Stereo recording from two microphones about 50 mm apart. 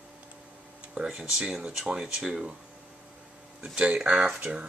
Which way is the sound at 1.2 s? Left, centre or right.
Centre.